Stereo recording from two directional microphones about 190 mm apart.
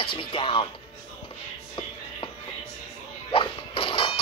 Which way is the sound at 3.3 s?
25° left (ahead or behind).